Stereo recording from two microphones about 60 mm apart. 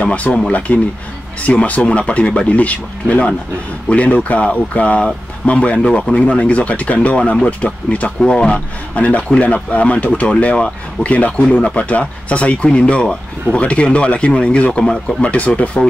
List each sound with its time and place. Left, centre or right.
0.0 s speech: left